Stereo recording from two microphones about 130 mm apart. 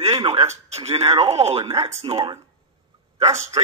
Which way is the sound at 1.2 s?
55° right (ahead or behind).